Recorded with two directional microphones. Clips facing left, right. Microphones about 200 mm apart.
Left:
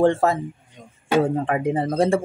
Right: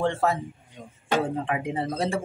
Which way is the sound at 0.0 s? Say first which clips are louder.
Left 6 dB; 45° left (ahead or behind).